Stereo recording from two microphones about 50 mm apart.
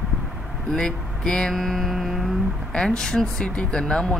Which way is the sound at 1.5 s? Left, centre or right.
Centre.